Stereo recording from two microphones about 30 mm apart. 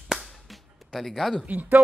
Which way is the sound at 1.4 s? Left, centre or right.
Right.